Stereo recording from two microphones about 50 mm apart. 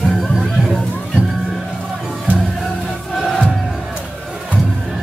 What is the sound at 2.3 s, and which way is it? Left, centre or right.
Music, right.